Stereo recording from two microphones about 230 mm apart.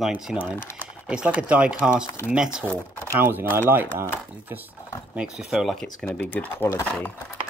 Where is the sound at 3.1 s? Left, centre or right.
Centre.